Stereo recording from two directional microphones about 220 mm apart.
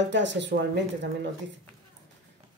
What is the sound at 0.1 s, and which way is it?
Speech, 55° right (ahead or behind).